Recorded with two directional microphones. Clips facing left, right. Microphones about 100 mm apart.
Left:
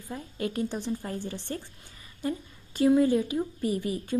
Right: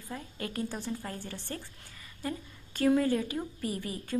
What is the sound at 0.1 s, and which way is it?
A woman's voice, 20° left (ahead or behind).